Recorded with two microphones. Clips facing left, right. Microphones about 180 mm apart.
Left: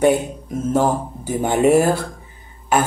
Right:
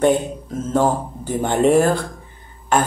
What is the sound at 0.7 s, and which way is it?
Speech, 10° left (ahead or behind).